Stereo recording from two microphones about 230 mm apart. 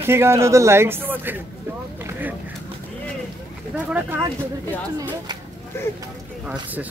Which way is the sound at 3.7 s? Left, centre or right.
Centre.